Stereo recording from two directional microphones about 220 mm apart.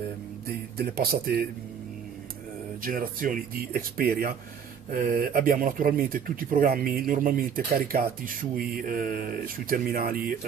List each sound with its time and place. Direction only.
0.5 s speech: 45° right (ahead or behind)
2.8 s speech: 40° right (ahead or behind)